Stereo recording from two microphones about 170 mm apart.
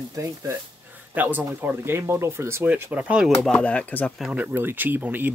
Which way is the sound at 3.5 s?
10° left (ahead or behind).